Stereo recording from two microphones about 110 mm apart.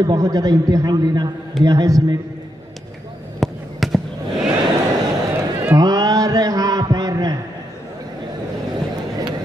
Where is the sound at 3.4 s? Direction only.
Centre (ahead or behind).